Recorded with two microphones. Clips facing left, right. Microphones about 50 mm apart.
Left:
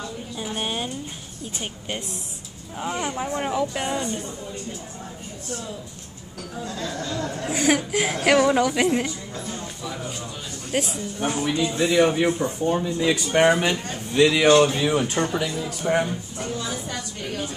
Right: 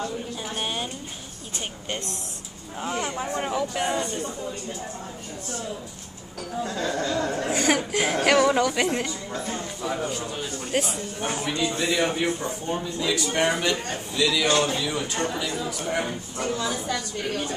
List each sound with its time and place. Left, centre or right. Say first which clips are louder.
0.4 s a sound: left 4 dB; centre
1.9 s speech: even; centre
6.6 s speech: right 4 dB; right
7.5 s speech: left 3 dB; centre
9.3 s a sound: right 2 dB; right
10.7 s speech: left 2 dB; centre
11.6 s speech: left 5 dB; centre
12.1 s speech: left 4 dB; centre
13.0 s a man's voice: left 5 dB; left
15.9 s speech: left 7 dB; left